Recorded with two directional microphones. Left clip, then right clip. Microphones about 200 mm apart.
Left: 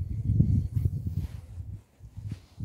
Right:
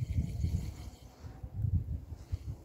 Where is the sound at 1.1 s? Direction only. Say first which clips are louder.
Left 14 dB; 25° left (ahead or behind).